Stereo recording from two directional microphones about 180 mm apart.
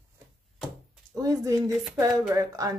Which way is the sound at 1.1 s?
20° right (ahead or behind).